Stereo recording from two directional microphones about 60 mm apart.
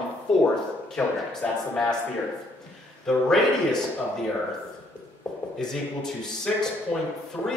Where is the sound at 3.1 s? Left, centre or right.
Centre.